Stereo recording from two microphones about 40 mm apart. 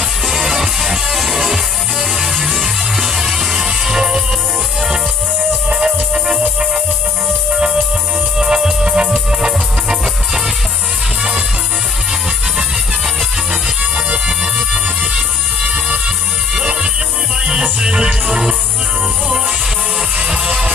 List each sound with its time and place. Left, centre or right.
0.3 s music: centre
2.6 s music: centre
5.7 s music: centre
7.5 s music: centre
14.2 s music: right
20.2 s music: right